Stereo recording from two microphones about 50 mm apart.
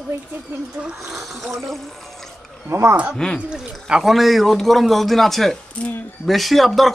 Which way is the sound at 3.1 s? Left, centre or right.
Centre.